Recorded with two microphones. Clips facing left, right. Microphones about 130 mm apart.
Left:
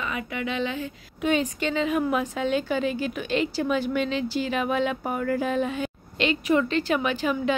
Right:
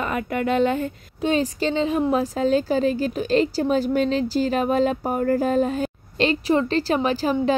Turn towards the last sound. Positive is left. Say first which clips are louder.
# right 4 dB
turn(degrees=-35)  # may be behind; listen again after turning